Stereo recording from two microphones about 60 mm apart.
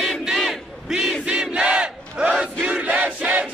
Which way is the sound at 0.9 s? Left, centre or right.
Centre.